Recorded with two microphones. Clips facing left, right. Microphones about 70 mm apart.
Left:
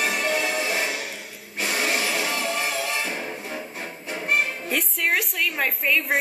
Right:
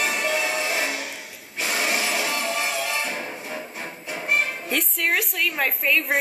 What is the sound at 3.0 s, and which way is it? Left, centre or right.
Music, centre.